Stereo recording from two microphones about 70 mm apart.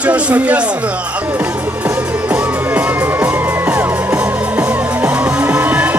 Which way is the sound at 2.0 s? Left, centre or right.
Centre.